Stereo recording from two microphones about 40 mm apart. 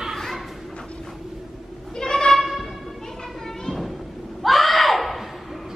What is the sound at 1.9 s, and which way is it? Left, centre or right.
Music, centre.